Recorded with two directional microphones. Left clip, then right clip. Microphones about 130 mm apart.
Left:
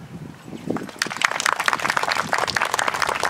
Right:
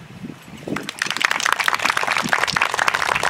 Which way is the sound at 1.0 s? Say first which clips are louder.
Right 2 dB; 10° left (ahead or behind).